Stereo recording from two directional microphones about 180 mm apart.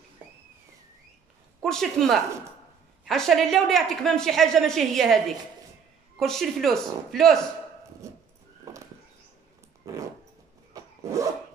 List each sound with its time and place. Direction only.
1.6 s a woman's voice: centre (ahead or behind)
8.7 s a sound: 20° right (ahead or behind)
9.8 s dog: 15° right (ahead or behind)
10.7 s rub: 15° right (ahead or behind)